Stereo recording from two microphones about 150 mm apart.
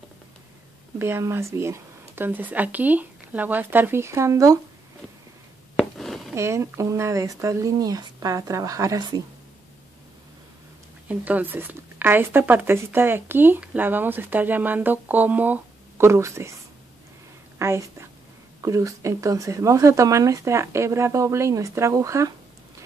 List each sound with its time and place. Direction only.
0.9 s speech: 15° right (ahead or behind)
5.8 s a sound: centre (ahead or behind)
6.3 s speech: 20° right (ahead or behind)
11.1 s speech: 10° right (ahead or behind)
17.6 s speech: 20° right (ahead or behind)